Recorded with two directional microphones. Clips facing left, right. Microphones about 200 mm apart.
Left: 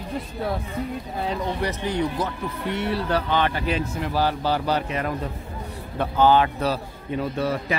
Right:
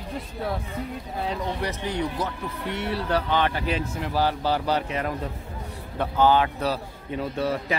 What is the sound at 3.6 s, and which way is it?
A man's voice, 30° right (ahead or behind).